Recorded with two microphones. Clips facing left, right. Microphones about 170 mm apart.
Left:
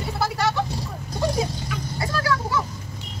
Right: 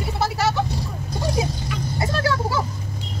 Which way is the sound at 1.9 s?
25° right (ahead or behind).